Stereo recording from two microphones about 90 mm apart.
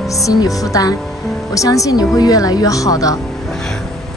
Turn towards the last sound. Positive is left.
turn(degrees=40)  # may be behind; listen again after turning